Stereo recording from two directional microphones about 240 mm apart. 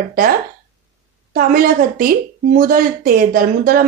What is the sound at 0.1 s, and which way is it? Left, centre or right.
Speech, right.